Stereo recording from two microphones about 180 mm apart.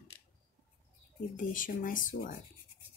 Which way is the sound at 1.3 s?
50° left (ahead or behind).